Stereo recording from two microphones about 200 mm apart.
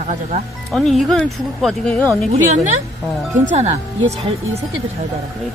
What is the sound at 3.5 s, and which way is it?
Speech, 35° right (ahead or behind).